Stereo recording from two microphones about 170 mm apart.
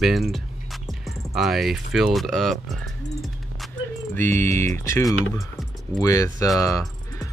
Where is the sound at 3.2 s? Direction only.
Centre (ahead or behind).